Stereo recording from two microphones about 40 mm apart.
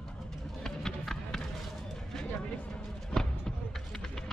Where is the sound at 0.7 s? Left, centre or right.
Centre.